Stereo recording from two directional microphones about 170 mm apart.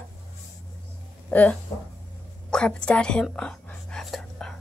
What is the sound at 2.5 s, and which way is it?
Whispering, 5° left (ahead or behind).